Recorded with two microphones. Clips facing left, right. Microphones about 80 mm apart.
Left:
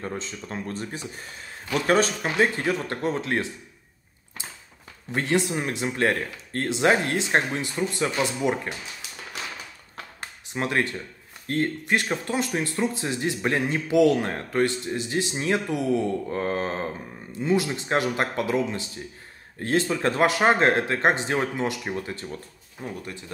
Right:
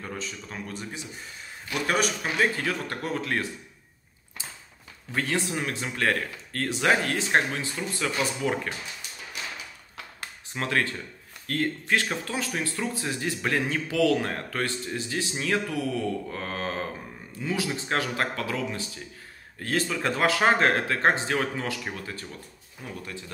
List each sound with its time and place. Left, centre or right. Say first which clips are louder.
0.0 s speech: left 3 dB; left
5.1 s speech: left 4 dB; left
10.5 s speech: left 2 dB; left